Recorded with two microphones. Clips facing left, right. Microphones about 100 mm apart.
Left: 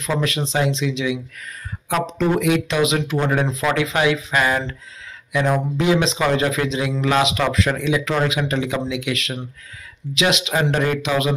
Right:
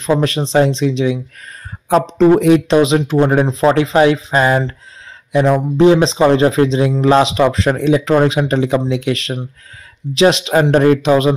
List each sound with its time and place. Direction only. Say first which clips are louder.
0.2 s speech: right 7 dB; 35° right (ahead or behind)